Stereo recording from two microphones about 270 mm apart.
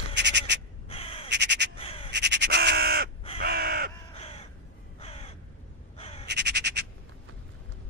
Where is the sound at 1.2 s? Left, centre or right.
Right.